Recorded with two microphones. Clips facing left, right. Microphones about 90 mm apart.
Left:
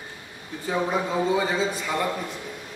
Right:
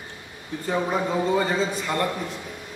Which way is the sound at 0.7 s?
Centre (ahead or behind).